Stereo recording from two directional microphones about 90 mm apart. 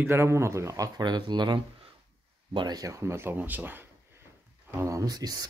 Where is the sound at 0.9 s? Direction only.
55° right (ahead or behind); by 3.8 s 20° right (ahead or behind).